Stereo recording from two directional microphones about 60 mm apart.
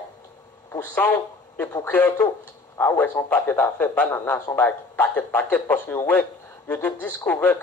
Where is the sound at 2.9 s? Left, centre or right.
Left.